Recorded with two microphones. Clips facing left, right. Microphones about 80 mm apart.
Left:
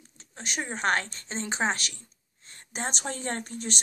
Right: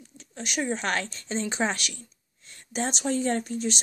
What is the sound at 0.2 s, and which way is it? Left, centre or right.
Speech, left.